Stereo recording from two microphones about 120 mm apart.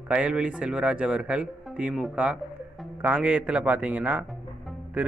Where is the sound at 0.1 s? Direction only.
10° right (ahead or behind).